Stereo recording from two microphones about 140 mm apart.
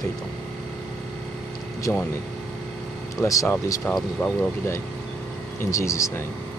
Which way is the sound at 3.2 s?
25° left (ahead or behind).